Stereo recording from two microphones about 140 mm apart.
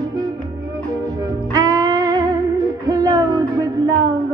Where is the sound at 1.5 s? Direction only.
25° right (ahead or behind).